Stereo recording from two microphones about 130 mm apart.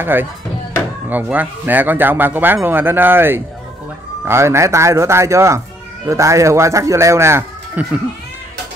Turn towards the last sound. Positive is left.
turn(degrees=-20)  # may be behind; listen again after turning